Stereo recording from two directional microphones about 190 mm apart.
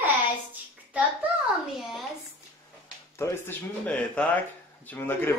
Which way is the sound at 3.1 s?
15° left (ahead or behind).